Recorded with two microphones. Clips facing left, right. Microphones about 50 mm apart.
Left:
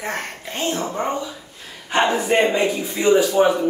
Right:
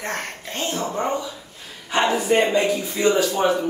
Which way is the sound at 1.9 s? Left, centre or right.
Left.